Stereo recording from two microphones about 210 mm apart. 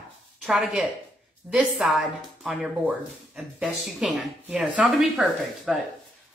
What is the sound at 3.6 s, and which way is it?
A woman's voice, 5° right (ahead or behind).